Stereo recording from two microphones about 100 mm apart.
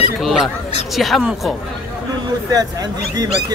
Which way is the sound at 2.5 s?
40° right (ahead or behind).